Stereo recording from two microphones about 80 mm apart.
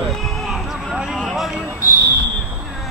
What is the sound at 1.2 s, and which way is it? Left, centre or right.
Speech, centre.